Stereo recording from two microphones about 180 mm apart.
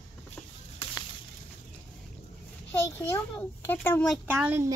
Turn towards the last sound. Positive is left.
turn(degrees=-10)  # may be behind; listen again after turning